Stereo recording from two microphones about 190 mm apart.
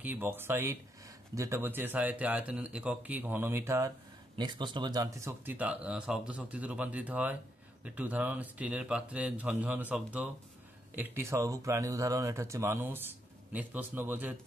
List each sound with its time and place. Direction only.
0.0 s speech: 10° right (ahead or behind)